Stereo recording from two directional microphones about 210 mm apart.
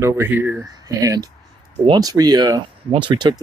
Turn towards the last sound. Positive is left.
turn(degrees=-20)  # may be behind; listen again after turning